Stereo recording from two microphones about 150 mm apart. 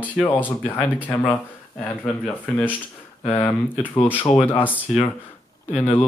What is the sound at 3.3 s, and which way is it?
Speech, 10° left (ahead or behind).